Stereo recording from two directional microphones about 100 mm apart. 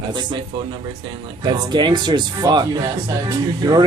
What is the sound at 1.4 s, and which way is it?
A man's voice, 45° right (ahead or behind).